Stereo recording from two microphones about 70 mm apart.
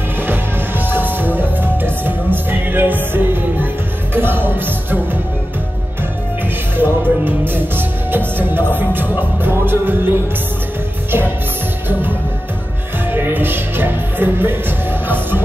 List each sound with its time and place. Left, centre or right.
0.3 s music: right
6.8 s music: right
13.1 s music: right